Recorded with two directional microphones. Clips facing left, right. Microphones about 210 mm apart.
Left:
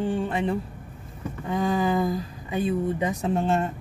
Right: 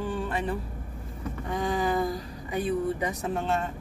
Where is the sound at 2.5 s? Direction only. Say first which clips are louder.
Left 2 dB; 25° left (ahead or behind).